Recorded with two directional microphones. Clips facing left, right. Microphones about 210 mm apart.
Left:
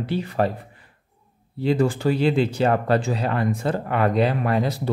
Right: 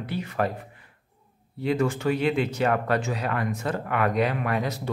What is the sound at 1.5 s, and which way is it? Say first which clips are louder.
Speech: left 4 dB; 30° left (ahead or behind).